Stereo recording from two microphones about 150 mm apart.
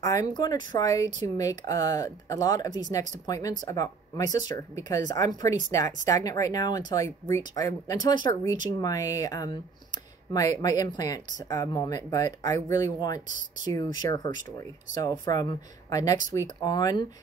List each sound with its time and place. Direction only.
0.0 s speech: 25° left (ahead or behind)